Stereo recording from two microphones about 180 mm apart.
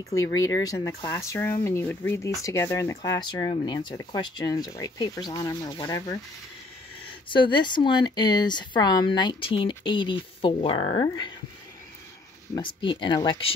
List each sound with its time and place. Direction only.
0.1 s speech: 20° left (ahead or behind)
7.2 s speech: 25° left (ahead or behind)
12.5 s speech: 25° left (ahead or behind)